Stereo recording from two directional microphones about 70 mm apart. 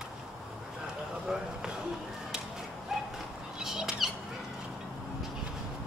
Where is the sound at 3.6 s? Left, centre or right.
Centre.